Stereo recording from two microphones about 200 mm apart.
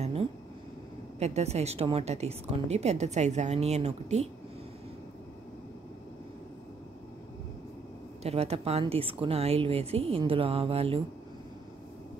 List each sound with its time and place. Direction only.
0.0 s a sound: 30° right (ahead or behind)
1.2 s a woman's voice: 30° right (ahead or behind)
8.2 s a woman's voice: 30° right (ahead or behind)